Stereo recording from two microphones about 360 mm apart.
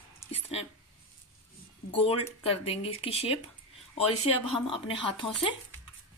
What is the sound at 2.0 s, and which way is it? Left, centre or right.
Speech, centre.